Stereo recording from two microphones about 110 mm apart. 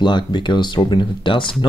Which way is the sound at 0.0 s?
45° left (ahead or behind).